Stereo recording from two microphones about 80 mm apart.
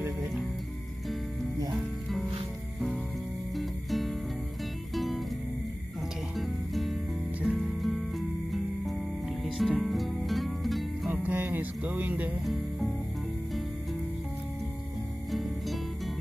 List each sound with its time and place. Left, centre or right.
3.5 s music: centre
6.3 s music: centre
11.2 s music: right
15.3 s music: centre